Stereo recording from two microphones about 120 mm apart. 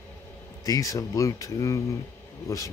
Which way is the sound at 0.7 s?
30° left (ahead or behind).